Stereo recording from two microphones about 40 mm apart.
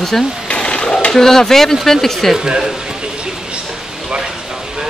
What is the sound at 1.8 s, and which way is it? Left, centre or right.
Speech, centre.